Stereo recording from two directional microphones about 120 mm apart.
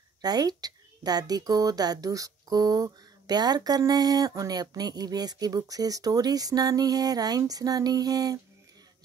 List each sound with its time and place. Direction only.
0.2 s speech: 35° right (ahead or behind)